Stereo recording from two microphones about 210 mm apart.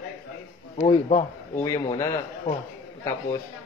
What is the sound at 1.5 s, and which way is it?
A man's voice, 15° left (ahead or behind).